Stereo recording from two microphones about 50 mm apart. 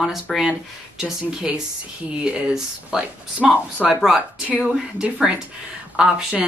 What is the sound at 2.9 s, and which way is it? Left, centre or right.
Speech, centre.